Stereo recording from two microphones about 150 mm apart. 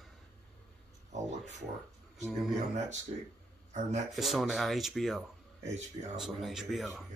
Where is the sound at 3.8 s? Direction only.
50° right (ahead or behind).